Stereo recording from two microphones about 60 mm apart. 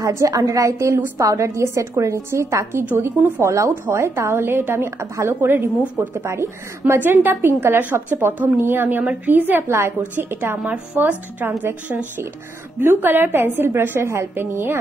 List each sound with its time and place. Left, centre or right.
0.0 s a woman's voice: right
0.3 s a woman's voice: right
3.2 s speech: right
3.4 s speech: right
3.8 s a woman's voice: right
5.9 s a woman's voice: right
6.9 s a woman's voice: right